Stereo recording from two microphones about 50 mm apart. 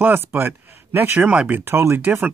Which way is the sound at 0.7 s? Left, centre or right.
Right.